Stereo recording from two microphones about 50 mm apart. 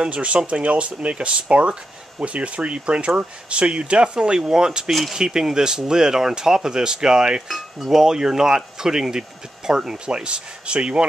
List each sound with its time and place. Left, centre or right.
0.0 s speech: right
7.4 s speech: centre; by 11.1 s right